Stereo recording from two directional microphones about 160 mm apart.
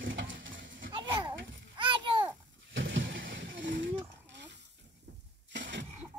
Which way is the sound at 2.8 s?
90° right.